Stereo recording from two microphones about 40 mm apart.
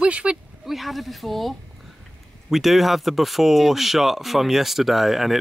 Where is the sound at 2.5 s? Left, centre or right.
Centre.